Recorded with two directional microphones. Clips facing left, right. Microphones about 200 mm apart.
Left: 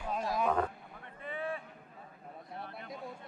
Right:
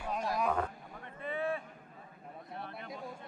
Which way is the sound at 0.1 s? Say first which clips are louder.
Left 1 dB; centre (ahead or behind).